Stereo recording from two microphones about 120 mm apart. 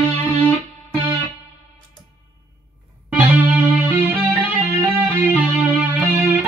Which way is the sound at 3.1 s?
15° right (ahead or behind).